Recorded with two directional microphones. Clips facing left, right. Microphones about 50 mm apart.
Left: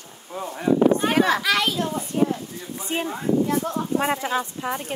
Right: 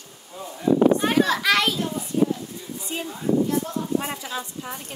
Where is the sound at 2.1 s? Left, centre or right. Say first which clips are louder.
Even; left.